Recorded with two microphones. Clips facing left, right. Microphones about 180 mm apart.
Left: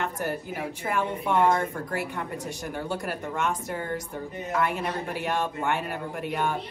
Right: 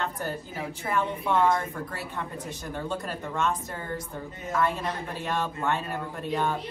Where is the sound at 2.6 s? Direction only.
10° left (ahead or behind).